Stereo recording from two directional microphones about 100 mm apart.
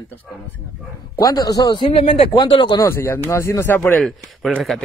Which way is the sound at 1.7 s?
60° left (ahead or behind).